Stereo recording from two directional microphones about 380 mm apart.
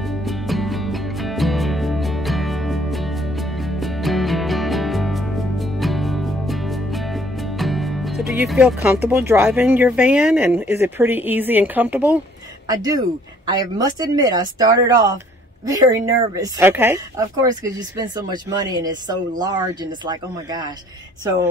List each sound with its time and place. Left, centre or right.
0.2 s music: centre
8.3 s speech: centre